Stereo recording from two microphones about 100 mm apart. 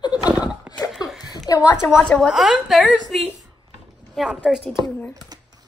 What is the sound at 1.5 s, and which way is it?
Speech, 45° left (ahead or behind).